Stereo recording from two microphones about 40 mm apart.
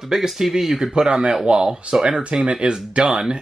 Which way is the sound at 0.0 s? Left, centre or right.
Centre.